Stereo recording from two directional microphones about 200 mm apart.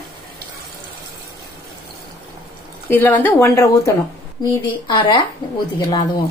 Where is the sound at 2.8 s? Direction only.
10° left (ahead or behind).